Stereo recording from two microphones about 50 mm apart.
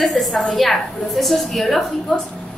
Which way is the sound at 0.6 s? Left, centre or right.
Centre.